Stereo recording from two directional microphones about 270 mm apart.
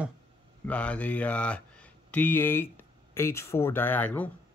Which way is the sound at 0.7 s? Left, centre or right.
Centre.